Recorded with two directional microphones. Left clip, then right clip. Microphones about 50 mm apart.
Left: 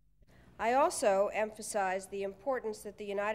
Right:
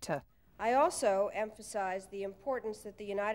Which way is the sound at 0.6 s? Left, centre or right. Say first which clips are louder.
Even; left.